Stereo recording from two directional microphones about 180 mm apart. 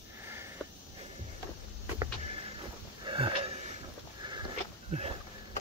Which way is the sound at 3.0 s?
30° right (ahead or behind).